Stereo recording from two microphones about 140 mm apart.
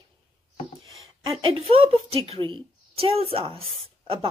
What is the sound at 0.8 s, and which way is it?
A woman's voice, 40° right (ahead or behind).